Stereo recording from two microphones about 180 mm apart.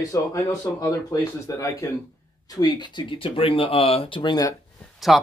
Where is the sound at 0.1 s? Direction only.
20° left (ahead or behind).